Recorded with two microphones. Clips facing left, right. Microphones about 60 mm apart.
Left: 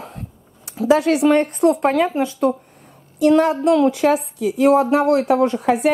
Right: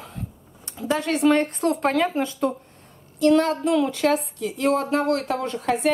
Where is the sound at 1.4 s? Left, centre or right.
Centre.